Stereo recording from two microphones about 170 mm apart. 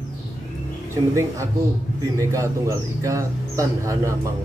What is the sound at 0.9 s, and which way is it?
Speech, 15° right (ahead or behind).